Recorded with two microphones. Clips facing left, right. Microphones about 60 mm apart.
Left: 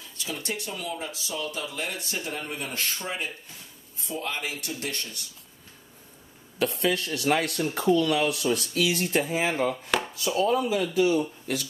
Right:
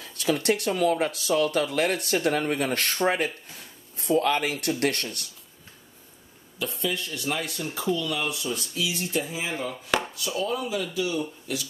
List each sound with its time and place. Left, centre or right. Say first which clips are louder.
0.0 s speech: right 10 dB; right
6.6 s speech: left 4 dB; left
8.2 s speech: left 5 dB; left